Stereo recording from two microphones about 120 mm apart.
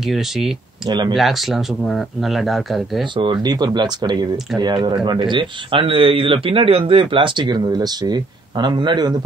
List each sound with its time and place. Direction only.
0.0 s speech: centre (ahead or behind)
0.8 s speech: 40° right (ahead or behind)
1.1 s speech: centre (ahead or behind)
3.2 s speech: 40° right (ahead or behind)